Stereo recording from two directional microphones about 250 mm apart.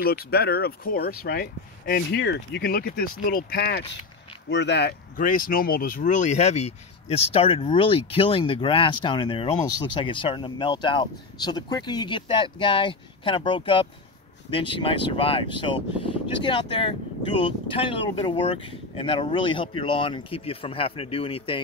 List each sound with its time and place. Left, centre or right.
0.0 s speech: left